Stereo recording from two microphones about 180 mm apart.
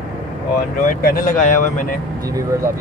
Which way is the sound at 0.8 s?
50° left (ahead or behind).